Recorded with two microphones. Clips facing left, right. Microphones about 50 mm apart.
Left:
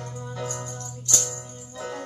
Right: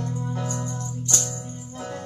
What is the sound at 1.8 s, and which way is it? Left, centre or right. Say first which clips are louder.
Music: left 1 dB; left.